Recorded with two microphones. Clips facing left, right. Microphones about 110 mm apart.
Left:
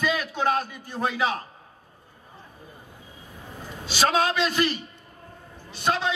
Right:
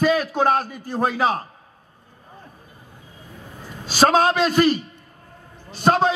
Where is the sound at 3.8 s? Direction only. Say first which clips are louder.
Right 6 dB; 45° right (ahead or behind).